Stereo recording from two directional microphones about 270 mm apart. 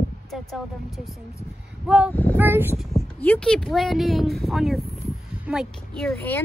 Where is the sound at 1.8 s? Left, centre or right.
Centre.